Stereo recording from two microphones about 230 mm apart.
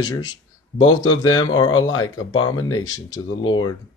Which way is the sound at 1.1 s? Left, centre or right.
Centre.